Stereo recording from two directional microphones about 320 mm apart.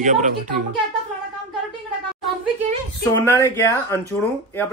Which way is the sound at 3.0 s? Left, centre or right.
Centre.